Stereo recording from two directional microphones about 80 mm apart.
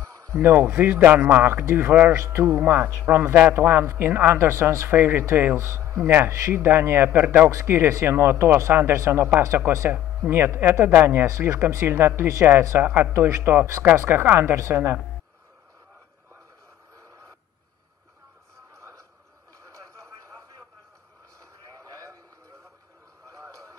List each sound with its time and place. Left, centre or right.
0.4 s a man's voice: right
2.6 s a man's voice: right